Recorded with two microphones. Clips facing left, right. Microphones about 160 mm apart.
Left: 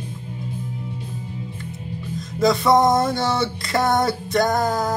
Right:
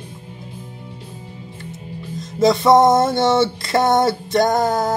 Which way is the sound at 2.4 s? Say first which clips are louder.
Right 4 dB; 25° right (ahead or behind).